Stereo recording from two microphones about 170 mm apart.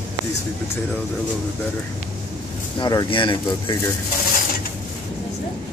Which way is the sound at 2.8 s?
25° left (ahead or behind).